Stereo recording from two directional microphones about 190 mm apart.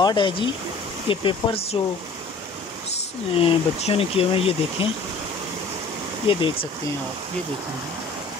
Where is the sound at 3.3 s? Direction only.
30° left (ahead or behind).